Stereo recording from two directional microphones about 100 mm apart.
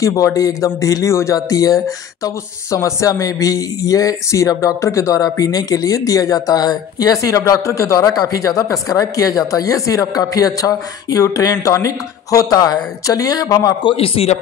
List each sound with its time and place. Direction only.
0.0 s speech: 35° left (ahead or behind)
13.8 s a man's voice: 70° left (ahead or behind)